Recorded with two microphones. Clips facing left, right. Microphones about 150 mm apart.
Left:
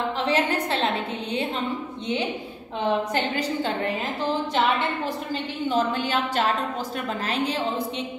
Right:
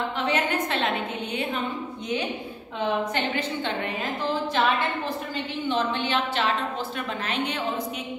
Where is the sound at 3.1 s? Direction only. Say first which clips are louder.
Left 2 dB; 40° left (ahead or behind).